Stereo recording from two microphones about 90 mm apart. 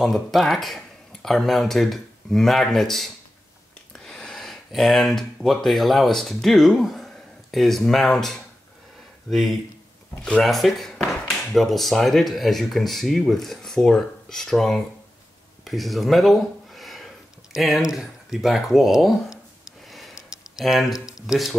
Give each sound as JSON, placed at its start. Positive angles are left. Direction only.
{"t": 0.0, "sound": "speech", "side_deg": 0}
{"t": 10.2, "sound": "speech", "side_deg": 5}
{"t": 19.9, "sound": "a sound", "side_deg": 0}
{"t": 21.0, "sound": "speech", "side_deg": -5}